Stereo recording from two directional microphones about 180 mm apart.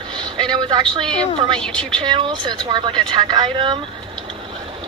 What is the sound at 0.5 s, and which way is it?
Speech, 25° right (ahead or behind).